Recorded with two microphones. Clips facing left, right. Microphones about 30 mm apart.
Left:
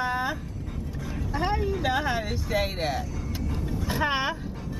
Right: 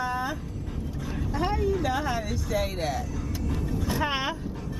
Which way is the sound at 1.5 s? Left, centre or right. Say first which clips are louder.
Even; left.